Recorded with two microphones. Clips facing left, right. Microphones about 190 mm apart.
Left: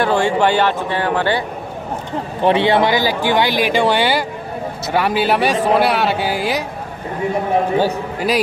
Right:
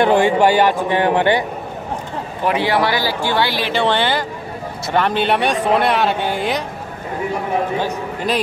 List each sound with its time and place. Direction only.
0.0 s a man's voice: 15° right (ahead or behind)
2.4 s speech: 25° left (ahead or behind); by 6.6 s 5° left (ahead or behind)